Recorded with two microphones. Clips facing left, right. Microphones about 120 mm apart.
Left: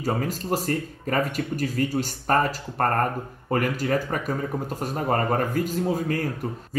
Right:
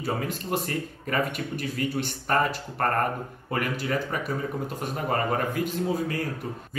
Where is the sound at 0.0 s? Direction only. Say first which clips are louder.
Left 3 dB; 40° left (ahead or behind).